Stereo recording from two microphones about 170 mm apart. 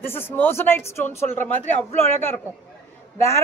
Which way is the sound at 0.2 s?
10° left (ahead or behind).